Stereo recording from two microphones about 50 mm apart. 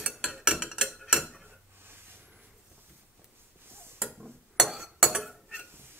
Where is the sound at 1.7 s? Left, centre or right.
Right.